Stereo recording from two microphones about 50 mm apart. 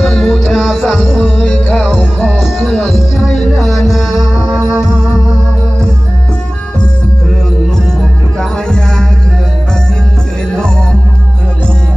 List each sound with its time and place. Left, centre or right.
0.0 s music: centre
1.2 s music: left
2.0 s music: centre
2.7 s music: centre
3.2 s music: centre
8.4 s music: centre
10.5 s music: centre